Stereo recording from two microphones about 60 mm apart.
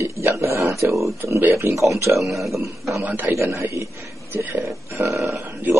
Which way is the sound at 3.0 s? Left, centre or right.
Right.